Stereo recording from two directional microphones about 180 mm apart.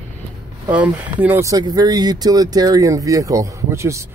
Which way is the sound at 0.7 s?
10° right (ahead or behind).